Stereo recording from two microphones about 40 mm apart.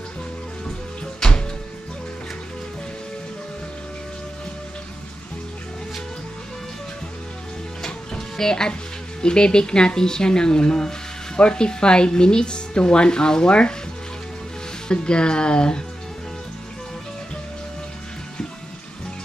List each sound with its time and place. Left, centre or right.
8.1 s music: centre
9.2 s speech: left
14.9 s speech: left